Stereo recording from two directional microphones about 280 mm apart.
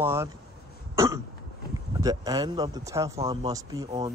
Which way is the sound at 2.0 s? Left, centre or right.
Centre.